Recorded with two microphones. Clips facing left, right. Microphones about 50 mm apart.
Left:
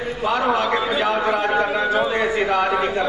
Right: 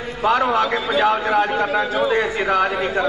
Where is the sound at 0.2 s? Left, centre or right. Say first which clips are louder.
Right 3 dB; centre.